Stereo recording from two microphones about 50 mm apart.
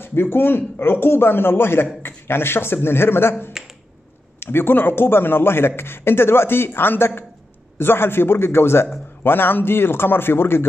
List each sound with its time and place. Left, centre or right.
0.0 s a man's voice: left